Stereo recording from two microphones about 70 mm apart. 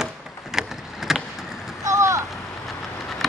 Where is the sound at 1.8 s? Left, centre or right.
Right.